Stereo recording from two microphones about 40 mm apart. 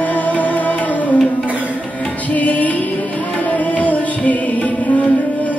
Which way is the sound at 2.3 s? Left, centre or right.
Left.